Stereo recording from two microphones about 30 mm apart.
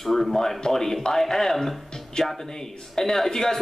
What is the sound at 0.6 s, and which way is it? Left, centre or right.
Speech, centre.